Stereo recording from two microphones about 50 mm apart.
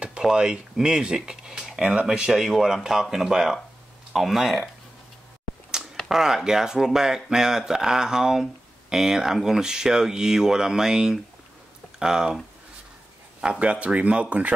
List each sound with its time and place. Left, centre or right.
0.0 s speech: centre
6.0 s speech: centre
13.4 s speech: right